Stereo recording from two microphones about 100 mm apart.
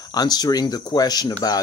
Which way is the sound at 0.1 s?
40° left (ahead or behind).